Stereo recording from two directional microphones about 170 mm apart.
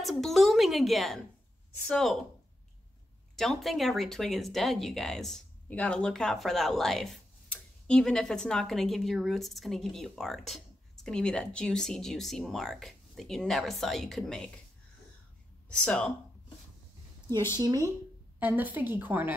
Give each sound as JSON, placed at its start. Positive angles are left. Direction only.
{"t": 0.0, "sound": "a woman's voice", "side_deg": 0}
{"t": 3.3, "sound": "a woman's voice", "side_deg": 0}
{"t": 15.7, "sound": "speech", "side_deg": 5}
{"t": 17.6, "sound": "speech", "side_deg": -20}
{"t": 18.4, "sound": "a woman's voice", "side_deg": -10}